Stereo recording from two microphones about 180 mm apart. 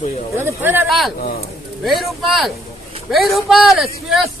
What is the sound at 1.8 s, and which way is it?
A man's voice, centre (ahead or behind).